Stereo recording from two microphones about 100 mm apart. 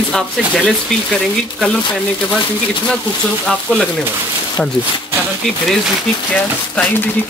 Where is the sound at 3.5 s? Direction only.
10° left (ahead or behind).